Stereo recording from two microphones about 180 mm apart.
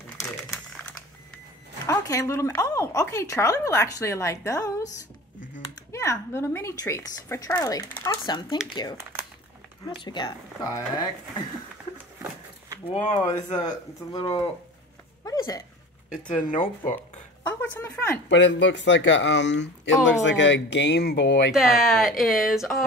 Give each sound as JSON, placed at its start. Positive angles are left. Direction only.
{"t": 0.4, "sound": "typing", "side_deg": 5}
{"t": 1.9, "sound": "speech", "side_deg": 15}
{"t": 5.9, "sound": "speech", "side_deg": 15}
{"t": 12.9, "sound": "speech", "side_deg": 40}
{"t": 14.1, "sound": "speech", "side_deg": 30}
{"t": 15.2, "sound": "a sound", "side_deg": 20}
{"t": 16.4, "sound": "speech", "side_deg": 50}
{"t": 17.6, "sound": "speech", "side_deg": 10}
{"t": 18.3, "sound": "speech", "side_deg": 90}
{"t": 21.5, "sound": "speech", "side_deg": 0}